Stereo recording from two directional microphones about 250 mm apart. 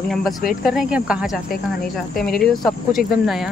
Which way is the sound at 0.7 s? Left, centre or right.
Centre.